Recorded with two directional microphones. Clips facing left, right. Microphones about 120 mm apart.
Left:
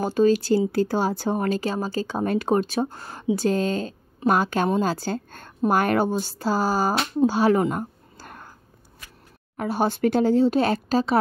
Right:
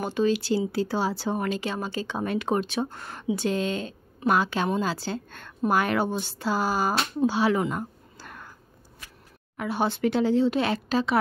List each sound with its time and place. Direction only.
0.0 s speech: 40° left (ahead or behind)
7.2 s a sound: 45° left (ahead or behind)
9.6 s speech: 40° left (ahead or behind)